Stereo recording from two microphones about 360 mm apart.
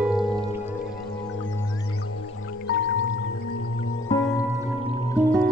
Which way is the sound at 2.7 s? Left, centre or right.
Left.